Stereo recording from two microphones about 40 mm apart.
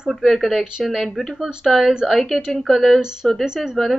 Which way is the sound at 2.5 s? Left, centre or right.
Centre.